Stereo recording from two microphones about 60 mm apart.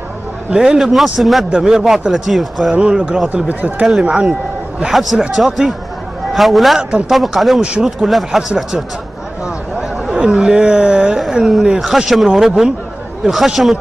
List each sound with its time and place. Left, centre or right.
0.5 s speech: centre
2.7 s speech: centre
3.4 s speech: right
4.0 s a man's voice: centre
5.2 s speech: centre
6.8 s speech: centre
7.1 s speech: centre